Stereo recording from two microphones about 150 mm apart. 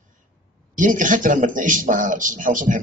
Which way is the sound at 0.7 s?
60° right (ahead or behind).